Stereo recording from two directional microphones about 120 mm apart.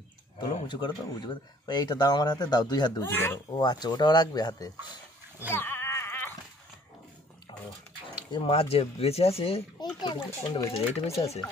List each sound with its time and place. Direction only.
0.4 s speech: 40° left (ahead or behind)
3.0 s speech: 20° left (ahead or behind)
3.5 s speech: 35° left (ahead or behind)
5.5 s goat: 20° left (ahead or behind)
8.3 s speech: 45° left (ahead or behind)
9.9 s speech: 40° left (ahead or behind)
11.1 s speech: 60° left (ahead or behind)